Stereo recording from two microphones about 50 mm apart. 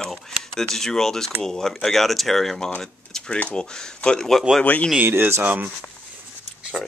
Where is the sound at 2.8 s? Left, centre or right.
Centre.